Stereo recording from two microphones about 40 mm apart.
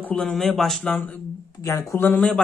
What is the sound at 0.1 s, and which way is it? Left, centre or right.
Speech, left.